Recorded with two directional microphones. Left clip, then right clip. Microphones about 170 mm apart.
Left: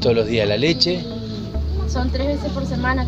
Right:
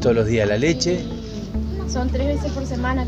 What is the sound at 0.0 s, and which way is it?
Speech, 15° right (ahead or behind).